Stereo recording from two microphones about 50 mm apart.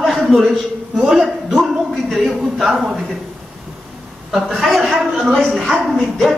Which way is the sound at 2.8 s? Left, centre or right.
Centre.